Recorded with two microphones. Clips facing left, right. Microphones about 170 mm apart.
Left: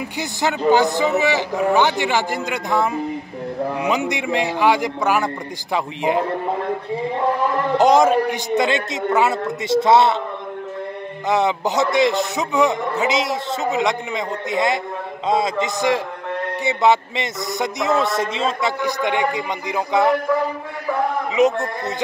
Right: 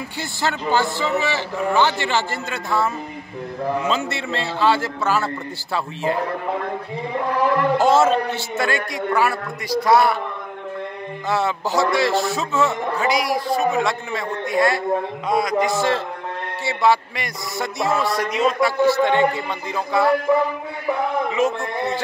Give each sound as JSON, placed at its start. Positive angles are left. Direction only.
{"t": 0.2, "sound": "a man's voice", "side_deg": 15}
{"t": 7.7, "sound": "a man's voice", "side_deg": 15}
{"t": 11.2, "sound": "a man's voice", "side_deg": 20}
{"t": 21.4, "sound": "speech", "side_deg": 20}